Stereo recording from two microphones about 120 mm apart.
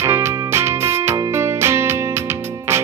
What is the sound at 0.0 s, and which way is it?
Music, 20° right (ahead or behind).